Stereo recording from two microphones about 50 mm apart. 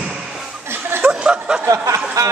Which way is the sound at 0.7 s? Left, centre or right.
Right.